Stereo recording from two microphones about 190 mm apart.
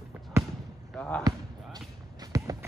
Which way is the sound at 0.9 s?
5° left (ahead or behind).